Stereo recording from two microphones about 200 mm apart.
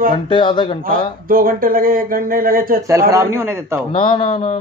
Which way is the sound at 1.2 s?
45° right (ahead or behind).